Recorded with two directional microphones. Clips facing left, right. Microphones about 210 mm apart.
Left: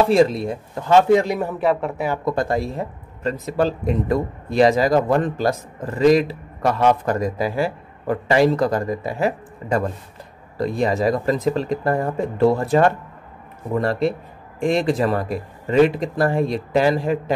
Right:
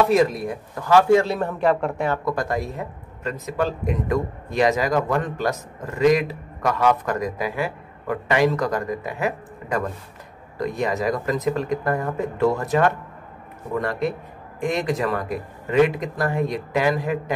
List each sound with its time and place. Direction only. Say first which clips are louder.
0.0 s speech: left 3 dB; 30° left (ahead or behind)
1.5 s speech: even; 5° left (ahead or behind)
2.2 s speech: left 3 dB; 25° left (ahead or behind)